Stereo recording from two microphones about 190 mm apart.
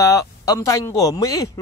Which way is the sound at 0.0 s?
15° left (ahead or behind).